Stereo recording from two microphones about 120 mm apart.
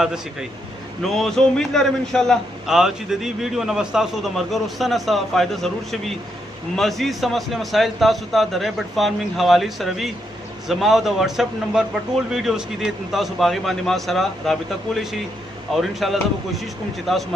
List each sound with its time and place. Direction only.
0.0 s a man's voice: 5° right (ahead or behind)